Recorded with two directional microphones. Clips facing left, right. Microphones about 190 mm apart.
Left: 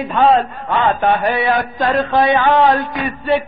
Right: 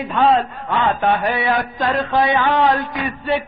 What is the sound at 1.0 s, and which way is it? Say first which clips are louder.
Chant: left 3 dB; 45° left (ahead or behind).